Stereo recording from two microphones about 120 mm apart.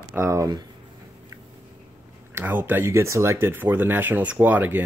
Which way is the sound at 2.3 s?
15° right (ahead or behind).